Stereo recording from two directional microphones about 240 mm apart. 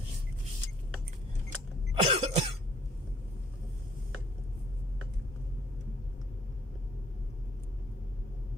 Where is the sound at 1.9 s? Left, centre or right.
Right.